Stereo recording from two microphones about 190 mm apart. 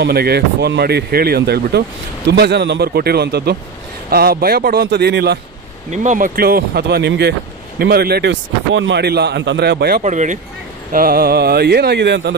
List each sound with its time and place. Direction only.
0.0 s speech: 55° right (ahead or behind)
5.9 s speech: 40° right (ahead or behind)
10.0 s speech: 40° right (ahead or behind); by 12.4 s 65° right (ahead or behind)